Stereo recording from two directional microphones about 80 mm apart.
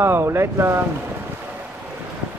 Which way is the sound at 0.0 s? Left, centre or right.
Right.